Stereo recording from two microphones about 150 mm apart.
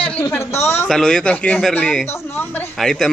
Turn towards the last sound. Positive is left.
turn(degrees=0)  # may be behind; listen again after turning